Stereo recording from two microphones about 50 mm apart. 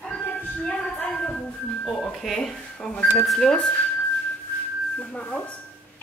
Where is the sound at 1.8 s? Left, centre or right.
Centre.